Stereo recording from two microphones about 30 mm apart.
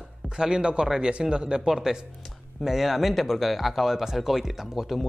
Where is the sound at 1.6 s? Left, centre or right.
Centre.